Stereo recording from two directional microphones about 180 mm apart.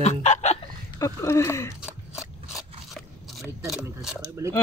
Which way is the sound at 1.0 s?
15° left (ahead or behind).